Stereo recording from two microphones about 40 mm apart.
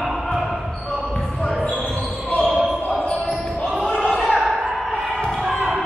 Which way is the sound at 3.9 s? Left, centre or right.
Centre.